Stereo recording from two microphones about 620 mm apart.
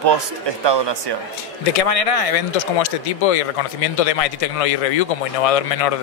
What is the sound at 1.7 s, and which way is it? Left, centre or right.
Speech, left.